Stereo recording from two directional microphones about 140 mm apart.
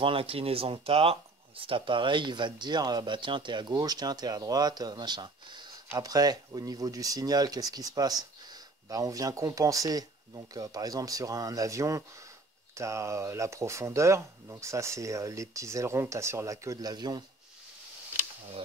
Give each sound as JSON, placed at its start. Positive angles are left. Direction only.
{"t": 0.0, "sound": "speech", "side_deg": -40}